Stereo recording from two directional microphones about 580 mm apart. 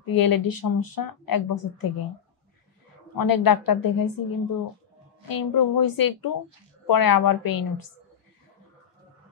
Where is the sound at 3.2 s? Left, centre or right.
Left.